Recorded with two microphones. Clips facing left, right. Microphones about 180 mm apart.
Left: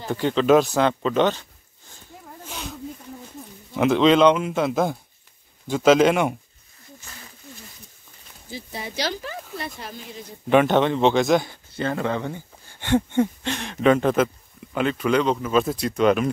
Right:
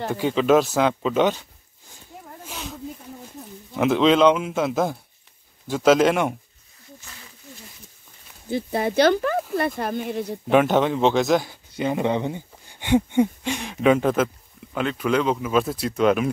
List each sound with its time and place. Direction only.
0.1 s speech: 5° right (ahead or behind)
2.4 s snake: centre (ahead or behind)
3.4 s a sound: centre (ahead or behind)
3.7 s speech: centre (ahead or behind)
8.5 s speech: 55° right (ahead or behind)
10.5 s speech: 5° right (ahead or behind)
11.7 s speech: 15° right (ahead or behind)